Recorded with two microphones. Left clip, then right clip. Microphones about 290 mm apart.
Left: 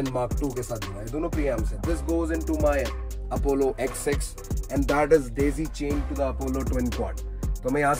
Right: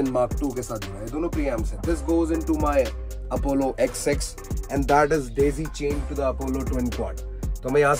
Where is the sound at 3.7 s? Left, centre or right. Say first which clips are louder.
Right 4 dB; right.